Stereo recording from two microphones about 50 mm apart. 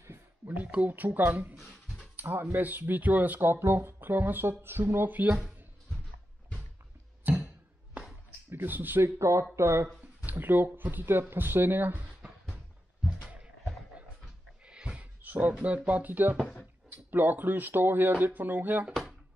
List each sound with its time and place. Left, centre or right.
0.7 s speech: right
2.1 s music: right
2.4 s speech: right
7.3 s a sound: right
8.5 s speech: right
9.0 s speech: right
10.2 s speech: right
14.7 s a sound: centre
15.2 s a sound: right
15.9 s speech: right